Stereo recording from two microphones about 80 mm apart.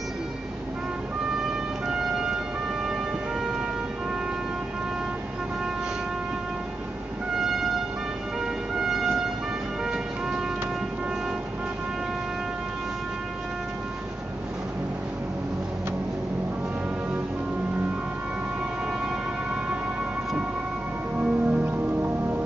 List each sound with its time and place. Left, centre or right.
1.9 s siren: centre
7.3 s music: centre
8.7 s a sound: centre
21.2 s music: centre